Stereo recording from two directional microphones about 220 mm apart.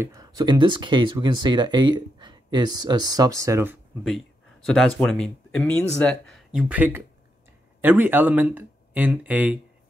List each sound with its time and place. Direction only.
0.0 s speech: 15° right (ahead or behind)
4.6 s speech: centre (ahead or behind)